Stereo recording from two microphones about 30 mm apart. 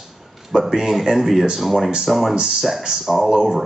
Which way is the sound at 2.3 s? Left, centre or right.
Right.